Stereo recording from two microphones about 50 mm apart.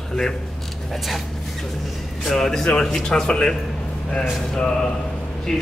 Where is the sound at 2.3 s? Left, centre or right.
Centre.